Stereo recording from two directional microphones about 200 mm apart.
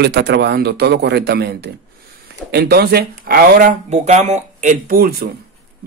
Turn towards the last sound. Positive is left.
turn(degrees=-50)  # may be behind; listen again after turning